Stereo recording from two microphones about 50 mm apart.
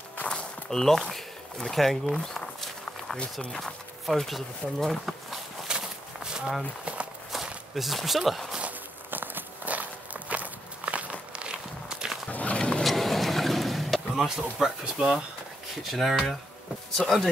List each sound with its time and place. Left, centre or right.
0.3 s speech: centre
2.1 s a sound: centre
3.5 s speech: centre
5.7 s a sound: centre
6.8 s walk: right
7.7 s speech: centre
8.6 s walk: right; by 12.1 s centre
12.3 s horse: left
12.5 s vehicle: centre
12.8 s vehicle: centre
14.1 s speech: centre
15.0 s speech: right
15.8 s speech: centre
16.9 s speech: centre